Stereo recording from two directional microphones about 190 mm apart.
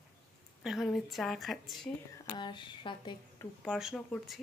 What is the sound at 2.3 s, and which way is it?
Speech, 25° left (ahead or behind).